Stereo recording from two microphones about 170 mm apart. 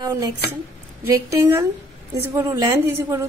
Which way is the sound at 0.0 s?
20° right (ahead or behind).